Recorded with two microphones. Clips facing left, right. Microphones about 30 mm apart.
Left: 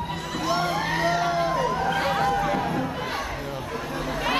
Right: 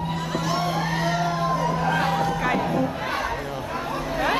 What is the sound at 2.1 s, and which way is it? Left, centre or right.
Music, centre.